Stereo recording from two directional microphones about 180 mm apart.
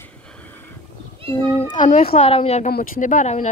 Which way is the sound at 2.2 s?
35° left (ahead or behind).